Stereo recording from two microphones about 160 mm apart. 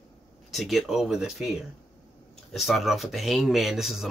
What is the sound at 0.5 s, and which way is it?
Speech, centre (ahead or behind).